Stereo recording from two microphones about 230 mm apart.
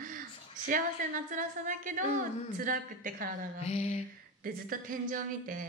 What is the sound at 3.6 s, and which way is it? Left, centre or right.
Speech, left.